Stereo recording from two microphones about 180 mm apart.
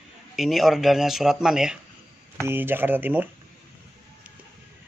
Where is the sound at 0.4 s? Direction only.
Centre (ahead or behind).